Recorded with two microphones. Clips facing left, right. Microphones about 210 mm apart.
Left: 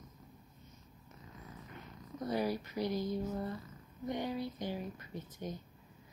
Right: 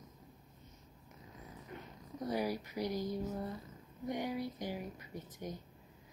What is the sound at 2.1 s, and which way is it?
Speech, 15° right (ahead or behind).